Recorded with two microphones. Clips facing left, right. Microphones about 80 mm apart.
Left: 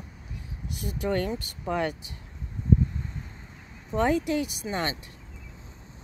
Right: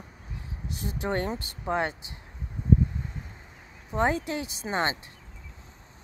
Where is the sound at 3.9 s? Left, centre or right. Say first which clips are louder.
Left 2 dB; right.